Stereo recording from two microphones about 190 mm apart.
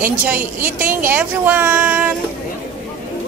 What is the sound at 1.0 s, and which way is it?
Speech, 10° right (ahead or behind).